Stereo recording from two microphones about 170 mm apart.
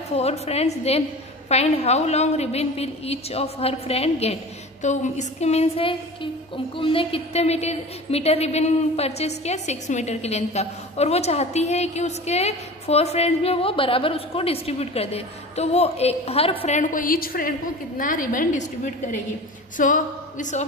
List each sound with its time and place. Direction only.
0.1 s a woman's voice: 40° left (ahead or behind)
16.6 s a woman's voice: 50° left (ahead or behind)
19.8 s a woman's voice: 50° left (ahead or behind)